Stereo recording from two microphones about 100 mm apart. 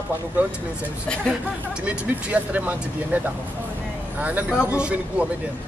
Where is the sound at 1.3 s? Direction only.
10° right (ahead or behind).